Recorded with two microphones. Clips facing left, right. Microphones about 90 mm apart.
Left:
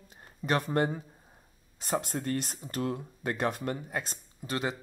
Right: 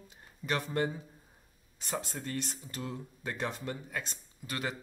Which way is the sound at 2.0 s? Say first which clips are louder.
Left 5 dB; 50° left (ahead or behind).